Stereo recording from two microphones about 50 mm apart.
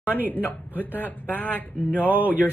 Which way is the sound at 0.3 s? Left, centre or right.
Left.